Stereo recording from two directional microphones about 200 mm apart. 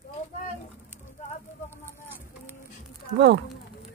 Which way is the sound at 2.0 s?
10° right (ahead or behind).